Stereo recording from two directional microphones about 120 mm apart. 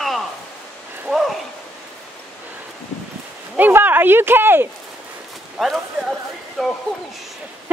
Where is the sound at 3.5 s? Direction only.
15° right (ahead or behind).